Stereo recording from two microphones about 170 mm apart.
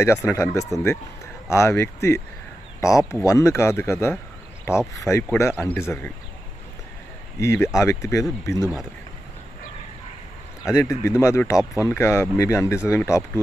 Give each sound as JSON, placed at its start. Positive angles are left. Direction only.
{"t": 0.0, "sound": "speech", "side_deg": 15}
{"t": 5.5, "sound": "speech", "side_deg": 5}
{"t": 7.3, "sound": "speech", "side_deg": 15}
{"t": 10.8, "sound": "speech", "side_deg": 15}